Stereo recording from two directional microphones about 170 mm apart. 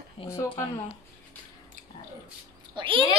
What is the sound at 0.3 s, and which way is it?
Speech, 15° left (ahead or behind).